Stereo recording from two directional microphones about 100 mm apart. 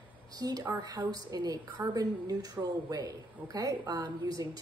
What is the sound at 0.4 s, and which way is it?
A woman's voice, 40° right (ahead or behind).